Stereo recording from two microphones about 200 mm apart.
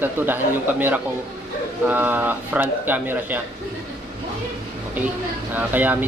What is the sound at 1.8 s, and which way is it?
Speech, 10° right (ahead or behind).